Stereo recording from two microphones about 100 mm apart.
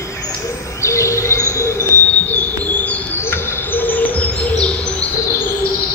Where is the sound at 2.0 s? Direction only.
15° left (ahead or behind).